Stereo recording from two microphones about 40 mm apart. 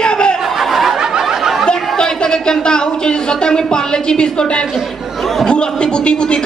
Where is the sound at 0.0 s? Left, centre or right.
Left.